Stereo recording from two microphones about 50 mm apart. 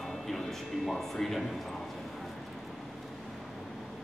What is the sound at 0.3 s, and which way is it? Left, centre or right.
Speech, centre.